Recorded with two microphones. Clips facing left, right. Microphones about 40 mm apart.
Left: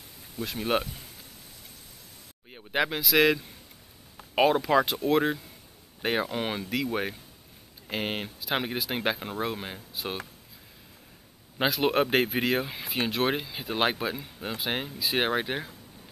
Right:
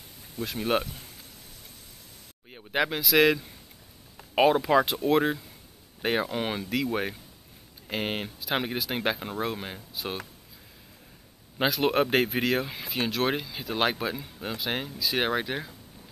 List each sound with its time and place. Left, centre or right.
0.4 s speech: centre
2.5 s speech: centre
11.5 s speech: centre